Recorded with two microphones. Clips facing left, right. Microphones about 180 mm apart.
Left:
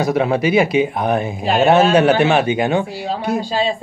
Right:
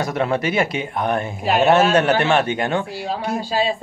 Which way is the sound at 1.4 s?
5° right (ahead or behind).